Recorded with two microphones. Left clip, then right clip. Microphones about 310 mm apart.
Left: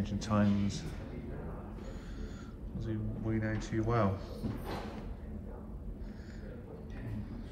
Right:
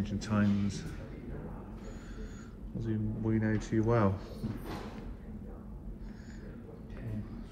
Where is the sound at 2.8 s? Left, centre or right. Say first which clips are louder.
Right 4 dB; left.